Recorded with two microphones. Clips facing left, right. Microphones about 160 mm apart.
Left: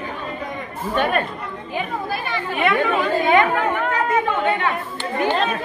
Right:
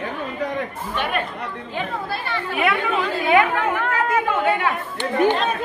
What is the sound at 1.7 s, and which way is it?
Speech, 15° left (ahead or behind).